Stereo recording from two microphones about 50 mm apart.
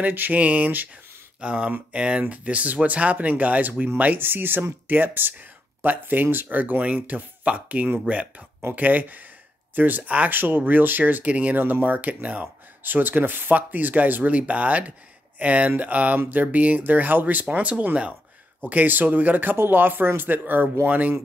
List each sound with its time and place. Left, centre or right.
0.0 s speech: right
1.4 s speech: right
8.6 s speech: right
11.5 s speech: right
17.5 s speech: right
19.5 s speech: right